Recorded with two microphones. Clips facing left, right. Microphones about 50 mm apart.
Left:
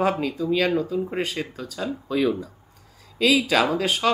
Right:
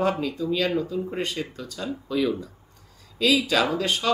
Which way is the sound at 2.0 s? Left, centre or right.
Left.